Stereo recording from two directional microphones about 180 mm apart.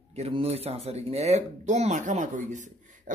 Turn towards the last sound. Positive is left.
turn(degrees=-45)  # may be behind; listen again after turning